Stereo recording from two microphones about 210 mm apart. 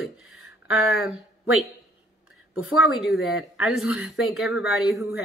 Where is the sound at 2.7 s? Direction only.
Centre (ahead or behind).